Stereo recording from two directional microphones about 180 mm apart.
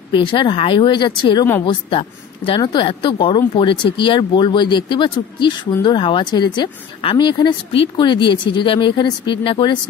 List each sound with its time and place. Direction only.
0.1 s speech: 25° left (ahead or behind)